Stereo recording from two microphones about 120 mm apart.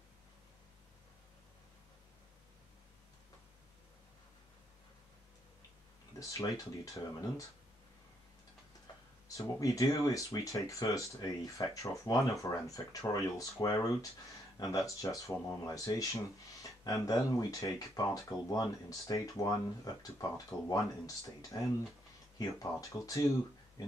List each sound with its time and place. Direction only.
6.1 s speech: 30° left (ahead or behind)
9.6 s speech: 30° left (ahead or behind)